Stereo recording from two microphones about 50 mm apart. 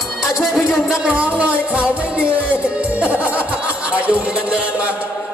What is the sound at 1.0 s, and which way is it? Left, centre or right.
Music, right.